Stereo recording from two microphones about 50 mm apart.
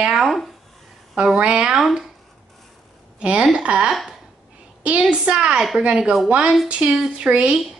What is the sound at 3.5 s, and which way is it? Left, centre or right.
A woman's voice, centre.